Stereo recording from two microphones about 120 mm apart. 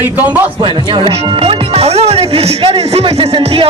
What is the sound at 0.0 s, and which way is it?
Speech, 15° right (ahead or behind).